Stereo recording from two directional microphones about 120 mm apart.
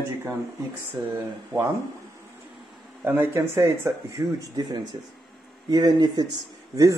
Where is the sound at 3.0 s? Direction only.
20° right (ahead or behind).